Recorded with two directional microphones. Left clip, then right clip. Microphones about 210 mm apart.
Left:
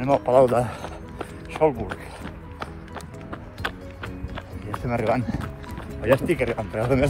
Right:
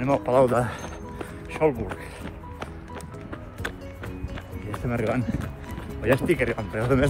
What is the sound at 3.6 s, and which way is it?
Music, centre (ahead or behind).